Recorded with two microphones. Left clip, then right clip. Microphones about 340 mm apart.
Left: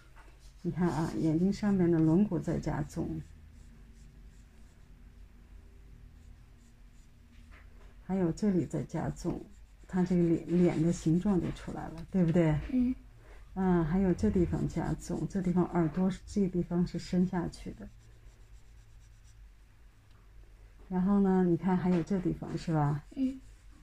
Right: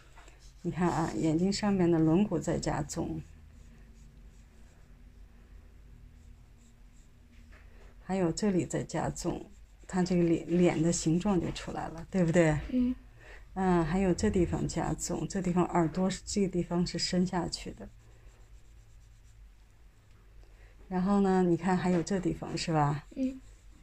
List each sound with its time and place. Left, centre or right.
0.7 s speech: right
8.1 s speech: right
13.6 s speech: right
20.9 s speech: right